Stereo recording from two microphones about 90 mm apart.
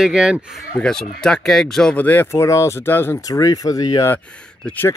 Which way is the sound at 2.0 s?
20° left (ahead or behind).